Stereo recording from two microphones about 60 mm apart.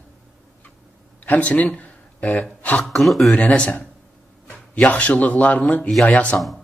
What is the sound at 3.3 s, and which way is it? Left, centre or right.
Speech, left.